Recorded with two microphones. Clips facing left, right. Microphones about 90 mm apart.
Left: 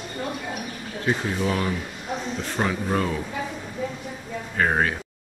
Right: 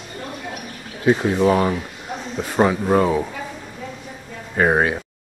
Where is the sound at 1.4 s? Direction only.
40° right (ahead or behind).